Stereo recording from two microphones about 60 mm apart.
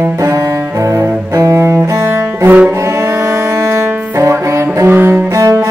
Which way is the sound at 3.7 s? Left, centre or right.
Right.